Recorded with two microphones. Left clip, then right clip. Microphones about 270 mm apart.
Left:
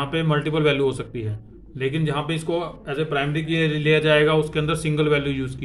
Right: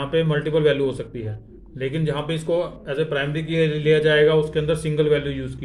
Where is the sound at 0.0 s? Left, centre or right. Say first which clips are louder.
Right 2 dB; left.